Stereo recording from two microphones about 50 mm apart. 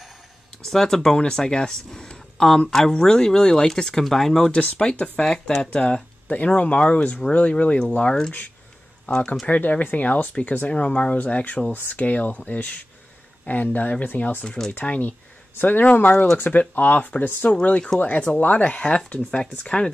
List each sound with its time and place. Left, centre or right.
0.7 s speech: centre
4.5 s speech: left
5.2 s speech: centre
6.2 s speech: left
9.0 s speech: left
11.7 s speech: left
17.5 s speech: left